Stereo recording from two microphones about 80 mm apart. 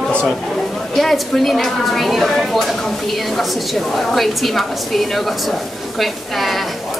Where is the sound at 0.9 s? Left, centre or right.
Centre.